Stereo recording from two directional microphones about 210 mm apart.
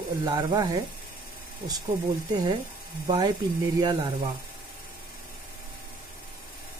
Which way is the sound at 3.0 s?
20° right (ahead or behind).